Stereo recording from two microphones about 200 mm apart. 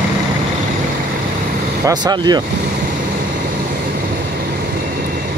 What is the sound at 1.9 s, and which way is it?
Speech, 20° right (ahead or behind).